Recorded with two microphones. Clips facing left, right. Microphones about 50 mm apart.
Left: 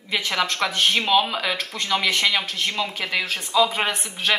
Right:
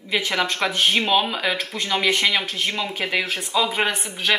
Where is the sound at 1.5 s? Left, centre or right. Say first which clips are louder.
Even; centre.